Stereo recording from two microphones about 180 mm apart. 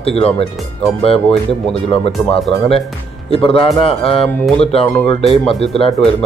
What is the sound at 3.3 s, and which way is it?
Speech, 30° left (ahead or behind).